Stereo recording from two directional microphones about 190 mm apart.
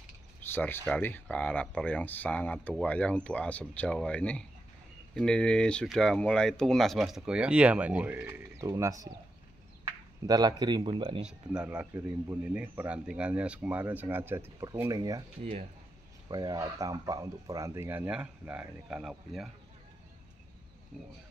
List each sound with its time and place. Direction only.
0.5 s speech: 10° left (ahead or behind); by 11.2 s 25° right (ahead or behind)
11.5 s speech: 5° right (ahead or behind)